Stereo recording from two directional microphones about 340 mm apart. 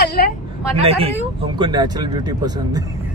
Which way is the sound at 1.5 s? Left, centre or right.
Centre.